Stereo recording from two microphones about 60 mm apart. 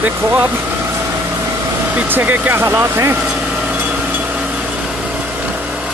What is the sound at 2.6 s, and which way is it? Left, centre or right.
Speech, right.